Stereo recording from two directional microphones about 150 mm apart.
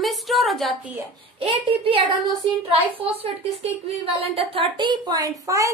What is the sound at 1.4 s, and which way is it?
A woman's voice, 40° right (ahead or behind).